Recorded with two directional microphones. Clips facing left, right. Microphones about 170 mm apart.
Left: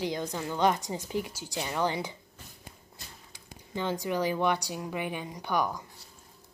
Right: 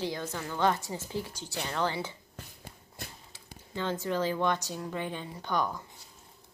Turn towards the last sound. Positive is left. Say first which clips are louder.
# left 2 dB
turn(degrees=10)  # may be behind; listen again after turning